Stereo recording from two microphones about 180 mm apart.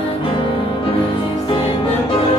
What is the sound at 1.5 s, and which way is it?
Music, 30° left (ahead or behind).